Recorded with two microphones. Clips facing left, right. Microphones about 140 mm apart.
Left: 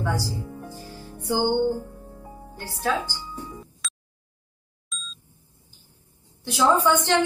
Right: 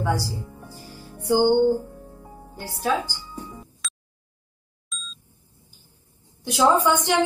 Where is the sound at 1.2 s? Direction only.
15° right (ahead or behind).